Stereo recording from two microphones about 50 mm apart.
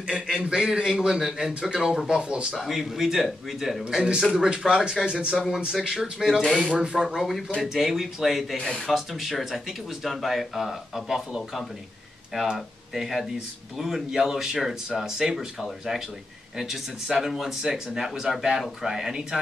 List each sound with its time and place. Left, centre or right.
0.0 s speech: centre
2.5 s speech: centre
3.9 s speech: centre